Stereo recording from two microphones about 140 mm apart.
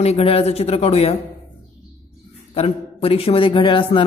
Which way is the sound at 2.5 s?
45° left (ahead or behind).